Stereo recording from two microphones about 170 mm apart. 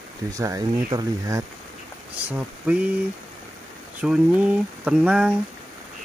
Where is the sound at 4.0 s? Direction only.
10° right (ahead or behind).